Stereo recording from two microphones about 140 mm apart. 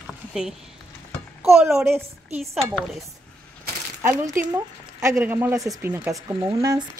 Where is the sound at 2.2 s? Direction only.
50° right (ahead or behind).